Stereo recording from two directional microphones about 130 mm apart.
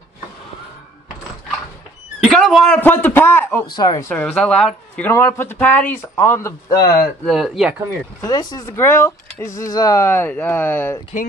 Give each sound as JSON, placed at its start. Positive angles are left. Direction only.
{"t": 2.2, "sound": "a sound", "side_deg": 0}
{"t": 2.8, "sound": "a man's voice", "side_deg": 15}
{"t": 3.7, "sound": "speech", "side_deg": 30}
{"t": 4.1, "sound": "a man's voice", "side_deg": 10}
{"t": 7.2, "sound": "speech", "side_deg": 0}
{"t": 8.2, "sound": "speech", "side_deg": 30}